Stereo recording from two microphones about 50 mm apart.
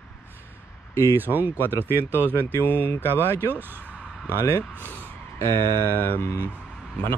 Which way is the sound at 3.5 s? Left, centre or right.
Right.